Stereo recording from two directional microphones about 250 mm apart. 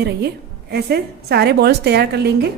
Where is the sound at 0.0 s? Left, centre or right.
Right.